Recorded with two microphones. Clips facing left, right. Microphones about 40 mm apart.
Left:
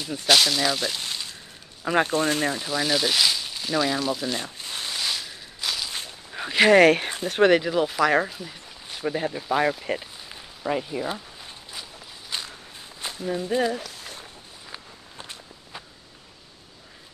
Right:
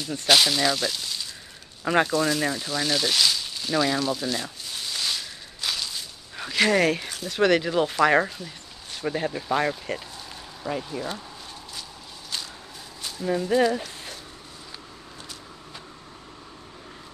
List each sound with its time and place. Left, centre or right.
0.0 s speech: centre
0.3 s speech: centre
1.0 s a sound: left
2.0 s speech: left
2.4 s speech: centre
4.4 s a sound: left
4.9 s walk: centre
6.3 s a sound: centre
6.7 s speech: left
7.6 s speech: centre
8.4 s speech: centre
13.5 s speech: left